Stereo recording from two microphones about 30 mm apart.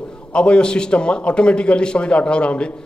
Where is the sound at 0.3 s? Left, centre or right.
Left.